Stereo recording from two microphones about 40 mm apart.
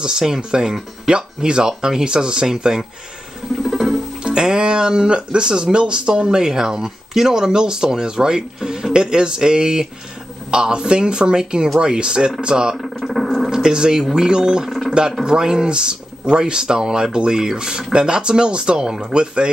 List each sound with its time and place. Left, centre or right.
0.0 s speech: centre
3.7 s music: centre
4.2 s speech: right
12.7 s a sound: centre
13.5 s speech: centre
14.9 s a sound: centre
15.2 s speech: centre